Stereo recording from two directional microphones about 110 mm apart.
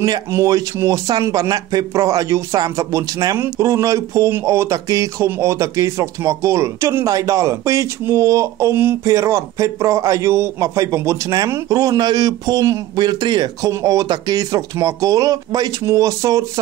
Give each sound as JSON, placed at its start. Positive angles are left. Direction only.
{"t": 0.3, "sound": "speech", "side_deg": -30}